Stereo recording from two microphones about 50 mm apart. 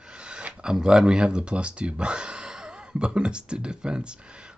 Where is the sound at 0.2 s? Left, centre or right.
Right.